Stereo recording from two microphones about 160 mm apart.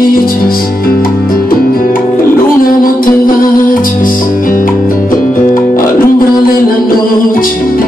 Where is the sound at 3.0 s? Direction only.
60° left (ahead or behind).